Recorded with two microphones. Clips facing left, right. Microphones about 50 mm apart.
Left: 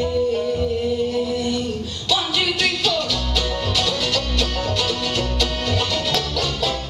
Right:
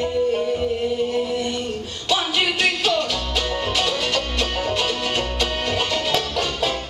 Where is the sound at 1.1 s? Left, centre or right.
Right.